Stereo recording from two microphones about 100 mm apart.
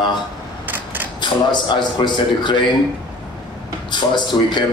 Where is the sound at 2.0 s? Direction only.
50° left (ahead or behind).